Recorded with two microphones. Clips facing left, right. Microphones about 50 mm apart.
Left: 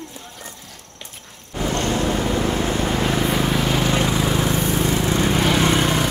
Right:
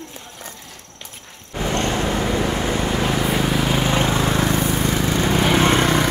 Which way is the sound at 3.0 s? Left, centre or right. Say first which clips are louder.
Even; centre.